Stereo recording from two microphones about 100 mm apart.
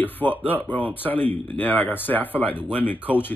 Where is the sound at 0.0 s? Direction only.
20° left (ahead or behind).